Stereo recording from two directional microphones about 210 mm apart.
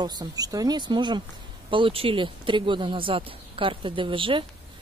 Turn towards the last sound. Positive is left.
turn(degrees=-25)  # may be behind; listen again after turning